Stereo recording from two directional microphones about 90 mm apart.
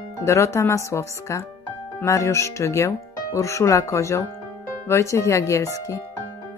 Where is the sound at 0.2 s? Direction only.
35° left (ahead or behind).